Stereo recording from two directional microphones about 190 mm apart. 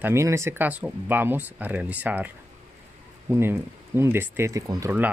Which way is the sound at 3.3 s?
15° right (ahead or behind).